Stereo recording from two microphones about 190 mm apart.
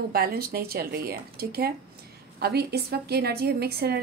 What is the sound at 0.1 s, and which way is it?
A woman's voice, 55° right (ahead or behind).